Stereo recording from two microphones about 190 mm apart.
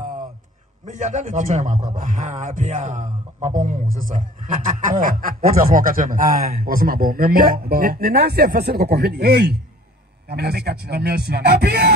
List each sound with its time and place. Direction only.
0.8 s a man's voice: 40° right (ahead or behind); by 11.9 s 55° right (ahead or behind)